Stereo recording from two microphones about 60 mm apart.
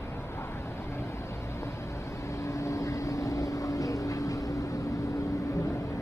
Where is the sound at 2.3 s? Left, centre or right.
Left.